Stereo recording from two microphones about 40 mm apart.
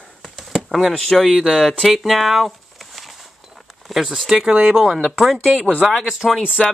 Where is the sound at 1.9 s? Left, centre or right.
Centre.